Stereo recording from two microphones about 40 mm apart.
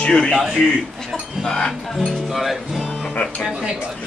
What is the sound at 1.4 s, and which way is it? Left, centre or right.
Music, centre.